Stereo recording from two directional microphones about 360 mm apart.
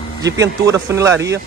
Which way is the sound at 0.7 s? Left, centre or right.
Centre.